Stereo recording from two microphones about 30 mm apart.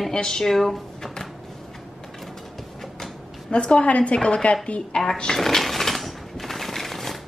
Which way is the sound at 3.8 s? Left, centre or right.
Left.